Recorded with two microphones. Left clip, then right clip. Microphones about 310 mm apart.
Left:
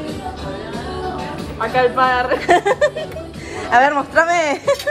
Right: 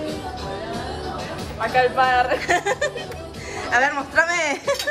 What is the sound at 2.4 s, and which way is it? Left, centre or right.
Speech, centre.